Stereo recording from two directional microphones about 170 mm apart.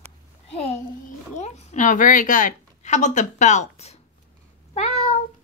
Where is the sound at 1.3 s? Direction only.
40° left (ahead or behind).